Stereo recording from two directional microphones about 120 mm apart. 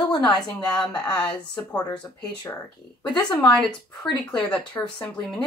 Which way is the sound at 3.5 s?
5° left (ahead or behind).